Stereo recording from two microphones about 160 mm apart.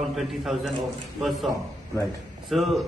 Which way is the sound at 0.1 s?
Centre (ahead or behind).